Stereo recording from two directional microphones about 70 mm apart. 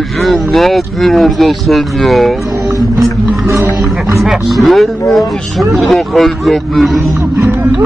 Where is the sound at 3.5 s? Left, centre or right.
Right.